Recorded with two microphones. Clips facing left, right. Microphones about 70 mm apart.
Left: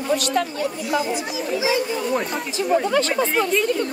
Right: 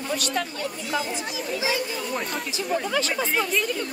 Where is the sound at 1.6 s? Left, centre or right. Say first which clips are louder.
Left 6 dB; centre.